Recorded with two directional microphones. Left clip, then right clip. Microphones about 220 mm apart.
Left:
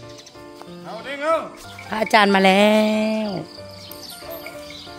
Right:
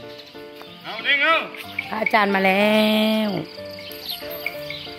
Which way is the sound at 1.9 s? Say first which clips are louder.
Left 3 dB; 25° left (ahead or behind).